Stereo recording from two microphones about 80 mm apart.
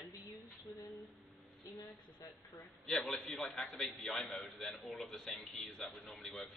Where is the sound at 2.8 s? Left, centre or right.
Centre.